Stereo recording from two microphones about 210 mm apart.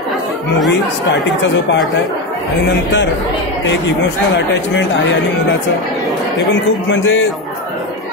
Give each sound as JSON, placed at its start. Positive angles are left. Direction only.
{"t": 3.6, "sound": "speech", "side_deg": 60}
{"t": 6.5, "sound": "speech", "side_deg": 65}